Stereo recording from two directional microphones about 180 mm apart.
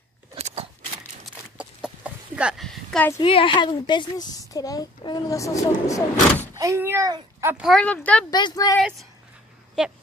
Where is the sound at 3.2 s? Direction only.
30° left (ahead or behind).